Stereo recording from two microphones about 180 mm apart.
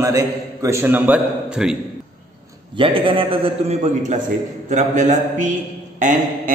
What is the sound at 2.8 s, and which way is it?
A man's voice, 30° right (ahead or behind).